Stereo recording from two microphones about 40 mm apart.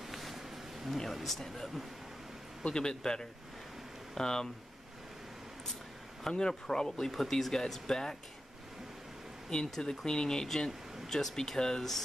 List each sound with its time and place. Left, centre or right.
0.0 s a sound: centre
1.3 s speech: centre
2.6 s a man's voice: centre
6.2 s speech: centre
9.5 s speech: centre